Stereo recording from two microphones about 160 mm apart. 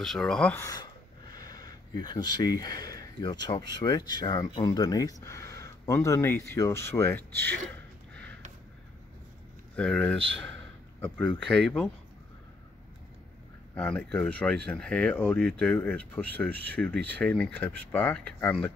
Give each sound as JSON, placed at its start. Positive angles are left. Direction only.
{"t": 0.0, "sound": "speech", "side_deg": 5}
{"t": 1.3, "sound": "speech", "side_deg": 25}
{"t": 9.8, "sound": "speech", "side_deg": 5}
{"t": 13.7, "sound": "speech", "side_deg": 10}